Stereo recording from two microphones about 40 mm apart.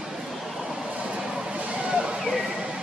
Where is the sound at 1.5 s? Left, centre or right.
Right.